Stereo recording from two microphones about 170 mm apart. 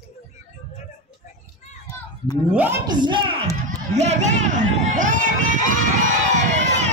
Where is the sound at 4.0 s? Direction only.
45° right (ahead or behind).